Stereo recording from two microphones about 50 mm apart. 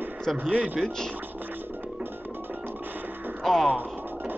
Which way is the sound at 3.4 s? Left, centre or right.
Centre.